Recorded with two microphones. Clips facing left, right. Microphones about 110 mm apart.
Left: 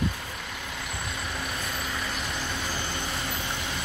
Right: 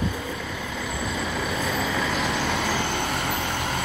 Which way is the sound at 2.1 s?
90° right.